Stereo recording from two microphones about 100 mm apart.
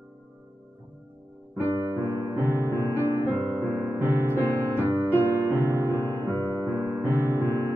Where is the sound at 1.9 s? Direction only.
25° right (ahead or behind).